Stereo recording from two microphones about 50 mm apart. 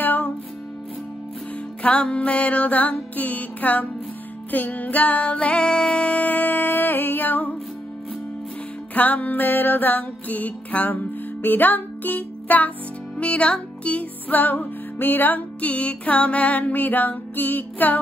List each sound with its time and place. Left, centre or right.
0.0 s music: left
1.8 s music: left
8.9 s music: left